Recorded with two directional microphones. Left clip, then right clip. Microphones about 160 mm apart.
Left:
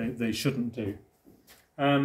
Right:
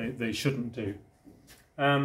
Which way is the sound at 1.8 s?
15° left (ahead or behind).